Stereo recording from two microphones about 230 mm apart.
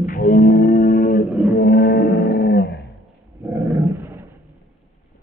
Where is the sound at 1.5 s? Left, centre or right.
Left.